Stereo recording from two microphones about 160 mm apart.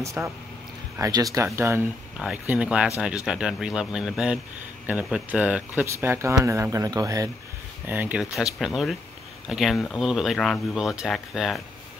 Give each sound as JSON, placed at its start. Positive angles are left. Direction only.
{"t": 0.0, "sound": "speech", "side_deg": -20}
{"t": 7.8, "sound": "speech", "side_deg": -10}